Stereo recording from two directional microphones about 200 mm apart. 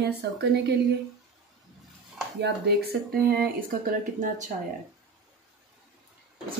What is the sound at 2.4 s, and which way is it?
Speech, 55° right (ahead or behind).